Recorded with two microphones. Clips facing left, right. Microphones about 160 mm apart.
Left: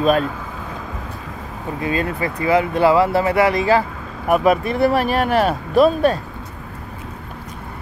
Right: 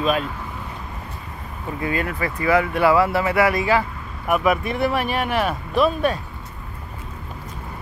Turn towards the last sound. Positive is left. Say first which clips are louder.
# left 5 dB
turn(degrees=35)  # may be behind; listen again after turning